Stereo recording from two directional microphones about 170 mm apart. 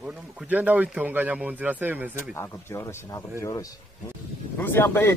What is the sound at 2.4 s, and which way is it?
Speech, 15° left (ahead or behind).